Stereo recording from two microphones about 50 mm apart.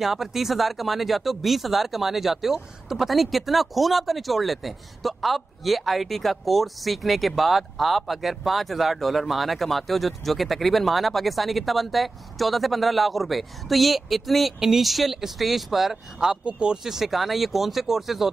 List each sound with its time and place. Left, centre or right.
0.0 s speech: centre
16.4 s speech: right
16.7 s speech: centre